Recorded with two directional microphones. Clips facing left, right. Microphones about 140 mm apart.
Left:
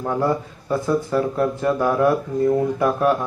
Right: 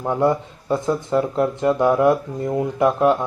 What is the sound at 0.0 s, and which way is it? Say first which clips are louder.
Speech: right 2 dB; 20° right (ahead or behind).